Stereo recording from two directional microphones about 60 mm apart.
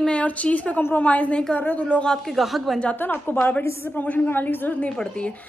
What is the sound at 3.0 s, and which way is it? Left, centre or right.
A woman's voice, left.